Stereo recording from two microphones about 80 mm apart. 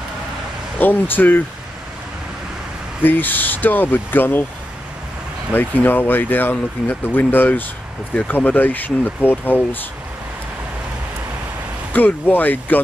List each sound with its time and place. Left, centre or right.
0.7 s speech: left
3.0 s speech: left
5.5 s speech: left
11.9 s speech: left